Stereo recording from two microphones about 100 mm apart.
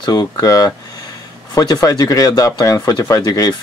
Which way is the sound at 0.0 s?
40° left (ahead or behind).